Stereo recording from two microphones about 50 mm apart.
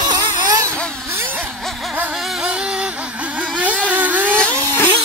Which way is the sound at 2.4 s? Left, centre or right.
Centre.